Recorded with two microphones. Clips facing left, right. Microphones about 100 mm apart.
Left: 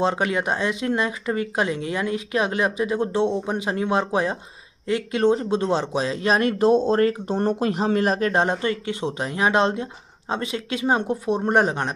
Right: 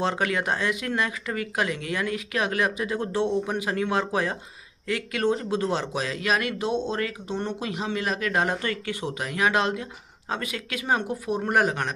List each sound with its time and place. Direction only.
0.0 s speech: 20° left (ahead or behind)